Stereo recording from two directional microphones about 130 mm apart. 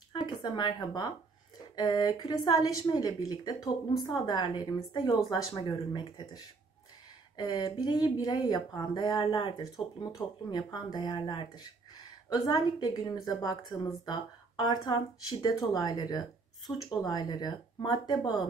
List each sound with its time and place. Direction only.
0.1 s a woman's voice: 35° left (ahead or behind)